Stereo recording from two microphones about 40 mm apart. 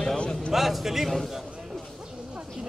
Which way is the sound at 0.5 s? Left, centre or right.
Centre.